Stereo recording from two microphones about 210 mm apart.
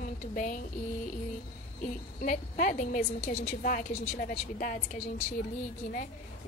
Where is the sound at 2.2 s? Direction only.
40° left (ahead or behind).